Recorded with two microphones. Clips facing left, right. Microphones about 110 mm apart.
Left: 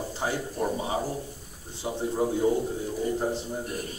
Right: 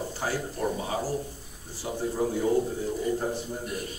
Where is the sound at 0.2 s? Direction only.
20° left (ahead or behind).